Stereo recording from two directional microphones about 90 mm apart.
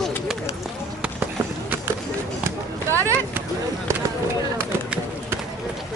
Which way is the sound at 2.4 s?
30° right (ahead or behind).